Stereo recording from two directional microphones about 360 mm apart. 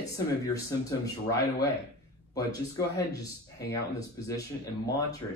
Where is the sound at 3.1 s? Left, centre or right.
Centre.